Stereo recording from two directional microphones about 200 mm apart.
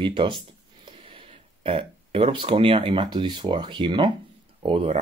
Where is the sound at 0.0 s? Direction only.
25° right (ahead or behind).